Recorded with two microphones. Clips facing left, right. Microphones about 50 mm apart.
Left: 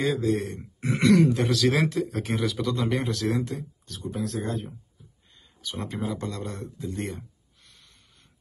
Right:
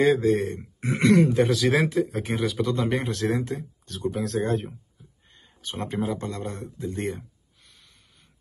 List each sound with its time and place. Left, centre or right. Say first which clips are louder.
0.0 s speech: right 5 dB; right
1.3 s speech: right 2 dB; centre
1.9 s speech: right 2 dB; right
3.9 s speech: right 4 dB; right
5.3 s speech: right 1 dB; right